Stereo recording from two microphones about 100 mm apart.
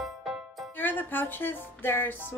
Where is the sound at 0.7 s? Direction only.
20° left (ahead or behind).